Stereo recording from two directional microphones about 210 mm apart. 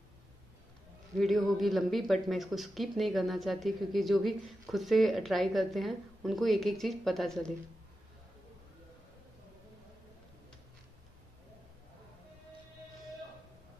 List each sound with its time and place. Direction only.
1.1 s a man's voice: centre (ahead or behind)